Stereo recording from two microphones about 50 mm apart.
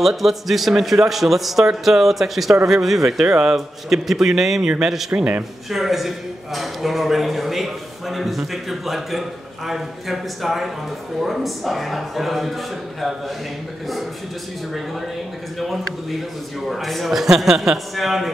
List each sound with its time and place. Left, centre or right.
0.0 s a man's voice: centre
5.1 s a man's voice: right
5.7 s a man's voice: centre
15.6 s a man's voice: centre